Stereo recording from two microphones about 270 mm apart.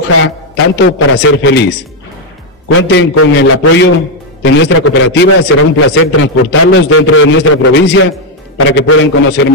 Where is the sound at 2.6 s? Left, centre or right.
Left.